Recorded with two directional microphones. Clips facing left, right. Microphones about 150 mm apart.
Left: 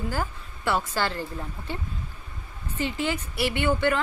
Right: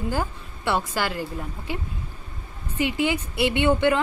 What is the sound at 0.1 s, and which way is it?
A woman's voice, 20° right (ahead or behind).